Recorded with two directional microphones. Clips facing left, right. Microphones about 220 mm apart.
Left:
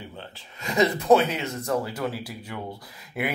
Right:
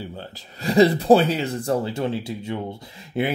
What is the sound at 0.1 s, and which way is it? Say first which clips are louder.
Speech: right 5 dB; 35° right (ahead or behind).